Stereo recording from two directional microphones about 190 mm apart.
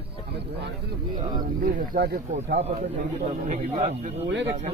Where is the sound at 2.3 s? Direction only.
35° right (ahead or behind).